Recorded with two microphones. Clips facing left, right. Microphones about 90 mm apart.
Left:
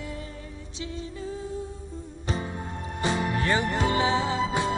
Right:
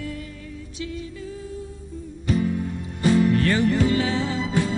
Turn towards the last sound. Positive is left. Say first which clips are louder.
# right 1 dB
turn(degrees=20)  # may be behind; listen again after turning